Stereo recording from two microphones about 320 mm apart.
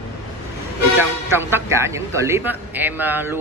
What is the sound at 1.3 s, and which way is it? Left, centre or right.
A man's voice, centre.